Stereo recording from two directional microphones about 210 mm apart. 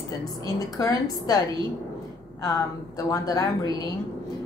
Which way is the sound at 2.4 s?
15° left (ahead or behind).